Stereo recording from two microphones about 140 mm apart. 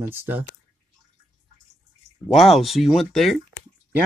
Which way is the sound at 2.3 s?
Centre (ahead or behind).